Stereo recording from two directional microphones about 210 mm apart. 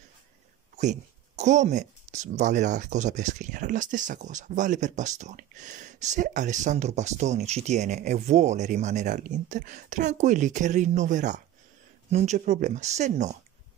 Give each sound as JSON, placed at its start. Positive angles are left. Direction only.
{"t": 1.4, "sound": "speech", "side_deg": -35}